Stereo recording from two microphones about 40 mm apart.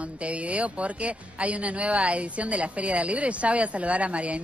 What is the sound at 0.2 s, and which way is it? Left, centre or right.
A woman's voice, right.